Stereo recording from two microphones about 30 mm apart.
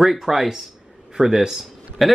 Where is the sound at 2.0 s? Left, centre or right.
Centre.